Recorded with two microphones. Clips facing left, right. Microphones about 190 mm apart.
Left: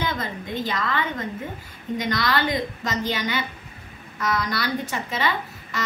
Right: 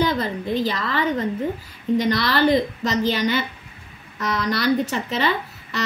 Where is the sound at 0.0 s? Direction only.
35° right (ahead or behind).